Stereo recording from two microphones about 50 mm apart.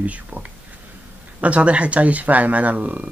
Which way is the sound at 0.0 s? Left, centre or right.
Right.